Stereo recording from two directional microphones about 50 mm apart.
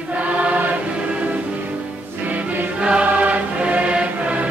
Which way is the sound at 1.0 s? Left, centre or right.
Right.